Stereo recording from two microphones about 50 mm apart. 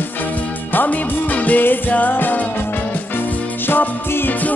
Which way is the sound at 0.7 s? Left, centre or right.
Left.